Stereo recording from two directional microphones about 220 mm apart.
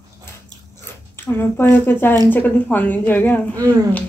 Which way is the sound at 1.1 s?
10° left (ahead or behind).